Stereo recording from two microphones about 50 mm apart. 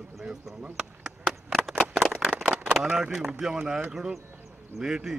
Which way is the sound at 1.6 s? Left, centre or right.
Right.